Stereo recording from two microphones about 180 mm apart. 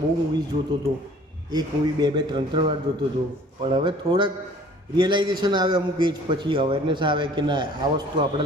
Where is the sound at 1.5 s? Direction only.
25° right (ahead or behind).